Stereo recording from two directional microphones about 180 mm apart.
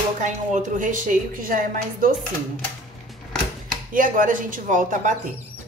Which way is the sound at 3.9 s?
50° right (ahead or behind).